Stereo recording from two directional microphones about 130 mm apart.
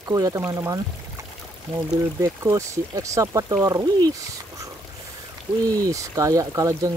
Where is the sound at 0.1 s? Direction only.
25° right (ahead or behind).